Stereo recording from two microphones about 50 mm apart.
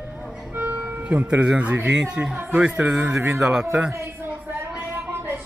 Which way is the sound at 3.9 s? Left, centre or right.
Right.